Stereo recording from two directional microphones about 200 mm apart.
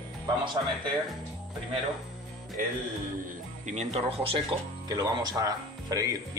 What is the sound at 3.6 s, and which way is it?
Speech, 35° right (ahead or behind).